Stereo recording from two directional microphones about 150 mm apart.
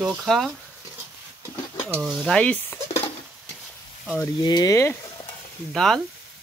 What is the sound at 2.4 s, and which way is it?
Stir, 10° left (ahead or behind).